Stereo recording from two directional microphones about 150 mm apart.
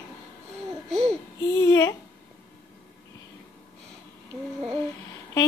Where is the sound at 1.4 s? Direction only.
25° left (ahead or behind).